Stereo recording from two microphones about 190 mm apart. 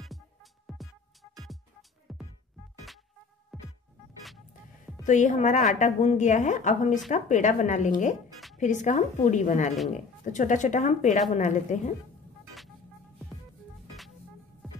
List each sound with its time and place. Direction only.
2.1 s music: centre (ahead or behind)
3.5 s music: centre (ahead or behind)
5.0 s a woman's voice: 40° left (ahead or behind)